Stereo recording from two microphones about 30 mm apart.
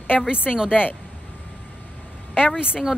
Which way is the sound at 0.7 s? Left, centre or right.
Left.